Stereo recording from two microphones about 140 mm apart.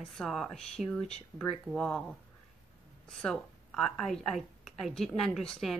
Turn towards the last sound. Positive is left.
turn(degrees=5)  # may be behind; listen again after turning